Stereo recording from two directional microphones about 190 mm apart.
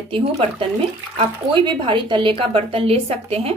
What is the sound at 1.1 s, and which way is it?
A woman's voice, 25° right (ahead or behind).